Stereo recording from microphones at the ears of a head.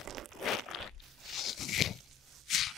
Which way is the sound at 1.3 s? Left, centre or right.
Left.